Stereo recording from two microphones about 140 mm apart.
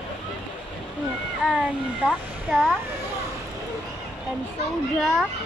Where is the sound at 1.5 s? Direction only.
Centre (ahead or behind).